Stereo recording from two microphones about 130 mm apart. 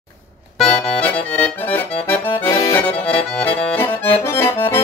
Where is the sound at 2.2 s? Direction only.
20° left (ahead or behind).